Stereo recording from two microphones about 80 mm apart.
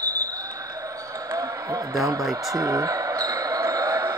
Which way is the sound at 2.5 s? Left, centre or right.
Right.